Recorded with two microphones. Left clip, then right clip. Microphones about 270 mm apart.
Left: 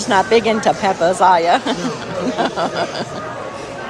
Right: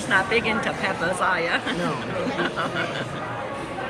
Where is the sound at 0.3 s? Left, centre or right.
Centre.